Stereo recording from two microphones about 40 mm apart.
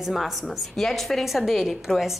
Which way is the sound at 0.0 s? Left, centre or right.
Centre.